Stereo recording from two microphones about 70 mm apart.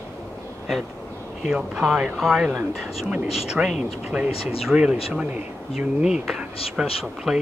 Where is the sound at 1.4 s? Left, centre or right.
Centre.